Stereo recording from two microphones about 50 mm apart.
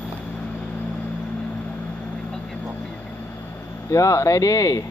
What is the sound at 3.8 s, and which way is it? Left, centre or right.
Speech, left.